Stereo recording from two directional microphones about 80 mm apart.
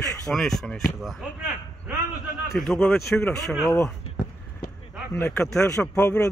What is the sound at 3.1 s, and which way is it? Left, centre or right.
Speech, centre.